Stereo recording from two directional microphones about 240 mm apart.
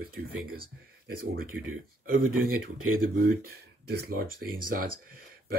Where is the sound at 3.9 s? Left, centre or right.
Right.